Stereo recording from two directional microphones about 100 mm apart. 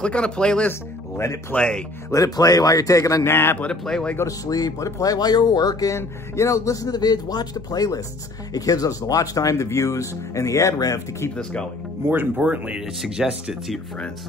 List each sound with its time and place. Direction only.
0.0 s speech: 10° left (ahead or behind)
0.7 s speech: 30° left (ahead or behind)
1.5 s speech: 10° left (ahead or behind)
2.0 s speech: 35° left (ahead or behind)
3.6 s speech: 10° left (ahead or behind)
4.3 s speech: 40° left (ahead or behind)
12.0 s speech: 20° right (ahead or behind)
12.4 s speech: 10° right (ahead or behind)